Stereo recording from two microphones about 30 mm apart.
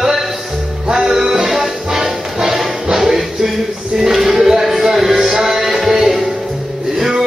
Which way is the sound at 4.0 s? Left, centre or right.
Centre.